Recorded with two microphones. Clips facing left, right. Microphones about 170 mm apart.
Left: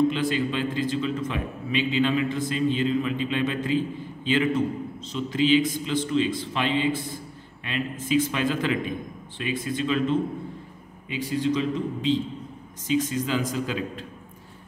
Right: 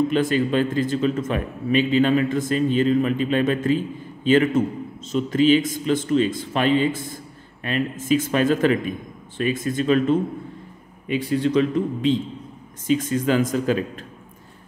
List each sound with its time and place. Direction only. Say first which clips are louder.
0.1 s a man's voice: right 6 dB; 45° right (ahead or behind)